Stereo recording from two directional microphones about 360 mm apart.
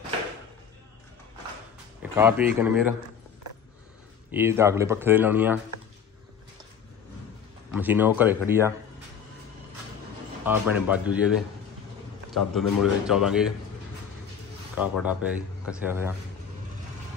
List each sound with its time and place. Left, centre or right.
2.1 s speech: centre
4.3 s speech: centre
7.7 s speech: centre
10.4 s speech: centre
12.3 s speech: centre
14.8 s speech: centre